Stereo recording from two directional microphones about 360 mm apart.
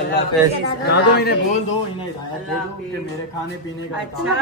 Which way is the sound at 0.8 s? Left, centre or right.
Left.